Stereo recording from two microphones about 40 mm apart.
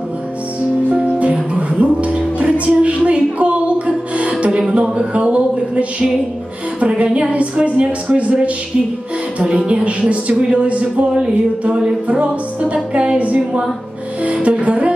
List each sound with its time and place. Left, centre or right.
0.6 s music: right
9.5 s speech: right
12.1 s music: right